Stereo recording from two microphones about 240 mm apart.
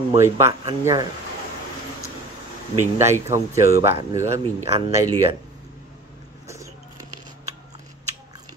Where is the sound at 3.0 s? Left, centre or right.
Centre.